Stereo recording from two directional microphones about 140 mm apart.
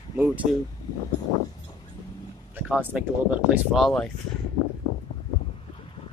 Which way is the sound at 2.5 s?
10° right (ahead or behind).